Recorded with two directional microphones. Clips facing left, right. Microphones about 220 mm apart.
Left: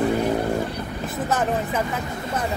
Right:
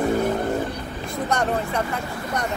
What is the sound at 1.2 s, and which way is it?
Speech, 5° left (ahead or behind).